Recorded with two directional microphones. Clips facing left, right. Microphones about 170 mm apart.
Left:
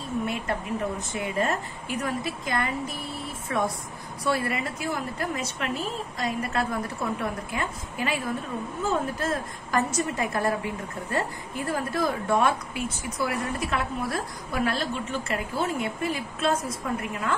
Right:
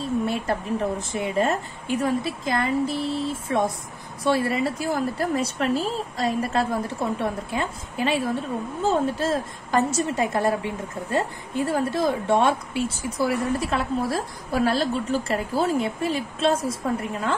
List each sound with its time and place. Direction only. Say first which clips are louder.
0.3 s a woman's voice: right 4 dB; 30° right (ahead or behind)